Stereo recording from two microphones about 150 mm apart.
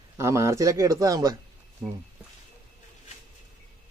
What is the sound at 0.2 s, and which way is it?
Speech, 20° right (ahead or behind).